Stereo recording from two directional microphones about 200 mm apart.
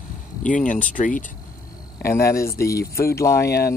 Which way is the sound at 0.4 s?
40° left (ahead or behind).